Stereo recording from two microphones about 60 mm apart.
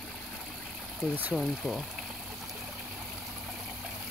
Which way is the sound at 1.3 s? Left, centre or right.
Centre.